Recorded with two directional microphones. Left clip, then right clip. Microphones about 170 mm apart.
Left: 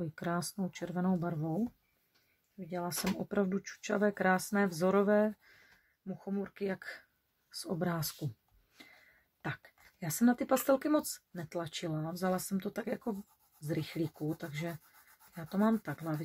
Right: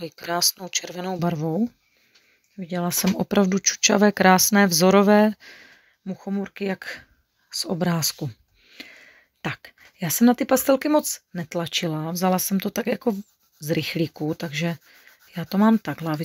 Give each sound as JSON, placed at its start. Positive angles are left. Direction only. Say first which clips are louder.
{"t": 0.3, "sound": "speech", "louder": "right 16 dB", "side_deg": -35}
{"t": 2.6, "sound": "speech", "louder": "right 11 dB", "side_deg": -50}
{"t": 9.4, "sound": "speech", "louder": "right 11 dB", "side_deg": -40}